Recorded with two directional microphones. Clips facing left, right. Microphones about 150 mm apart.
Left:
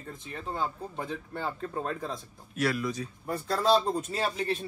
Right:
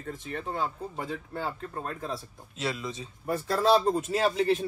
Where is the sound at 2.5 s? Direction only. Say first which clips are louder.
Left 4 dB; 25° right (ahead or behind).